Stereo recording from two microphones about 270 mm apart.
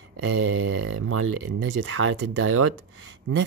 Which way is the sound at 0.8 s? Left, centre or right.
Right.